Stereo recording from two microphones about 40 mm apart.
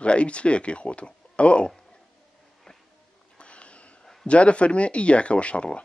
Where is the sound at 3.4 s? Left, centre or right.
Left.